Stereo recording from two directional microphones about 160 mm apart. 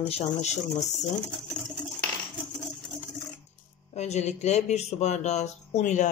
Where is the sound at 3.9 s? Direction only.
45° left (ahead or behind).